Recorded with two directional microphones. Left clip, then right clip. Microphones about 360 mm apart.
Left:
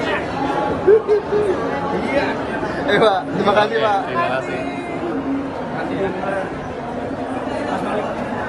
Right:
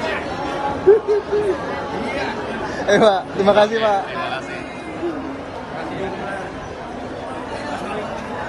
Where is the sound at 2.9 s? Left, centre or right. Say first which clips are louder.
Right 1 dB; right.